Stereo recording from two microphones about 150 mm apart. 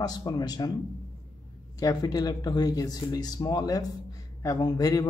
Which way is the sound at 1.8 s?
25° left (ahead or behind).